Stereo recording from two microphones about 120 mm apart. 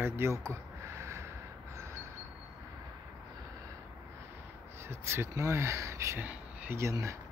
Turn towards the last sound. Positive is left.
turn(degrees=-25)  # may be behind; listen again after turning